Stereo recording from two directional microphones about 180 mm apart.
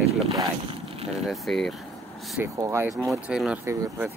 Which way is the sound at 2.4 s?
15° right (ahead or behind).